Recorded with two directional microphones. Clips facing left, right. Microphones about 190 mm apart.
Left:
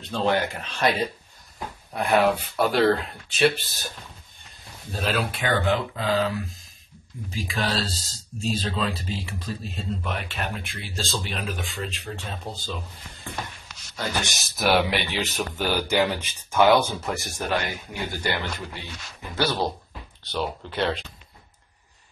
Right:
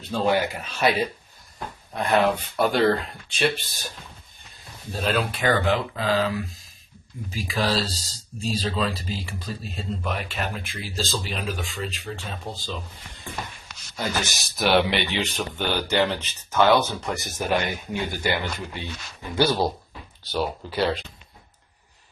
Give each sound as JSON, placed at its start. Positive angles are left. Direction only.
{"t": 0.0, "sound": "speech", "side_deg": -5}
{"t": 2.0, "sound": "speech", "side_deg": 15}
{"t": 2.2, "sound": "speech", "side_deg": 0}
{"t": 4.9, "sound": "speech", "side_deg": 0}
{"t": 13.9, "sound": "speech", "side_deg": 0}
{"t": 17.1, "sound": "speech", "side_deg": 0}
{"t": 17.5, "sound": "speech", "side_deg": -15}